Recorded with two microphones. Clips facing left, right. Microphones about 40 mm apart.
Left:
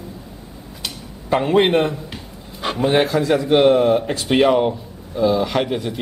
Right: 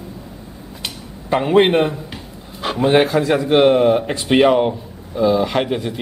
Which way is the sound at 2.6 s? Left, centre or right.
Centre.